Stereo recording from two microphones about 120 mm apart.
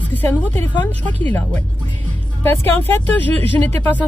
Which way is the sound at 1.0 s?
15° left (ahead or behind).